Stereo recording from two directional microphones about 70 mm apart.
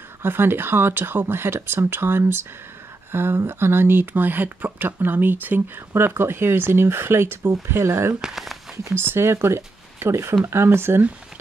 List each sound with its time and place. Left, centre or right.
0.2 s speech: right
8.2 s a sound: centre
8.8 s speech: right